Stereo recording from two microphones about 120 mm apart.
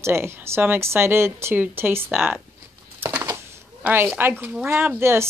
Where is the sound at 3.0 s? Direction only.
20° right (ahead or behind).